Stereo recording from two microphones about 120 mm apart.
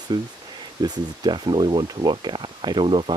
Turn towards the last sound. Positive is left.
turn(degrees=-45)  # may be behind; listen again after turning